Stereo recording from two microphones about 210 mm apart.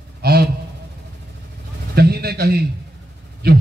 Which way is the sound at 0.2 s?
50° right (ahead or behind).